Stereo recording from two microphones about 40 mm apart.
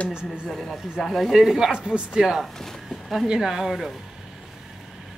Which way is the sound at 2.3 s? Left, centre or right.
Centre.